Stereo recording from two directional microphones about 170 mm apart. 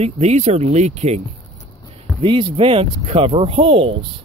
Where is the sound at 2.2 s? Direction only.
30° right (ahead or behind).